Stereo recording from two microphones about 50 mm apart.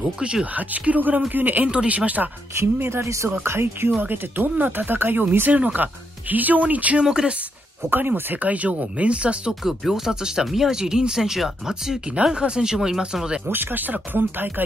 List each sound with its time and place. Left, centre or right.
0.2 s speech: centre
0.6 s speech: right
2.8 s speech: right
3.4 s speech: right
4.0 s speech: right
5.5 s speech: right
7.0 s speech: centre
7.9 s speech: right
9.6 s speech: centre
13.5 s speech: right